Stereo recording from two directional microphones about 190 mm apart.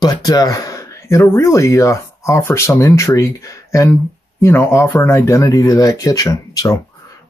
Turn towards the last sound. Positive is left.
turn(degrees=20)  # may be behind; listen again after turning